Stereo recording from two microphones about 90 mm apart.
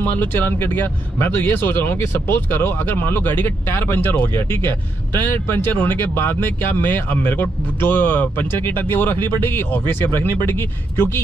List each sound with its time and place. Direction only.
0.0 s speech: 20° left (ahead or behind)